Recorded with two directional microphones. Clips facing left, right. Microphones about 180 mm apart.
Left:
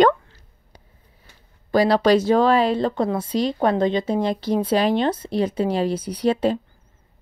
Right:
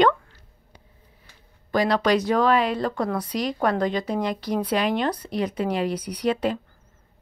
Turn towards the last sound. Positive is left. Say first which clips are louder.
# left 4 dB
turn(degrees=30)  # may be behind; listen again after turning